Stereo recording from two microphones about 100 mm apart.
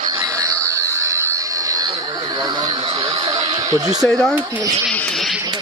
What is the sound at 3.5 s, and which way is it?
Speech, 35° right (ahead or behind).